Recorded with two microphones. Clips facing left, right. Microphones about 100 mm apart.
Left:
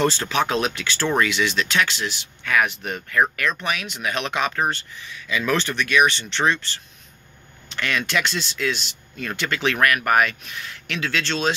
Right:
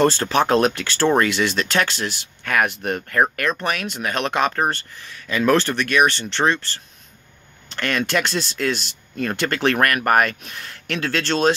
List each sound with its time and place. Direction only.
0.0 s speech: 40° right (ahead or behind)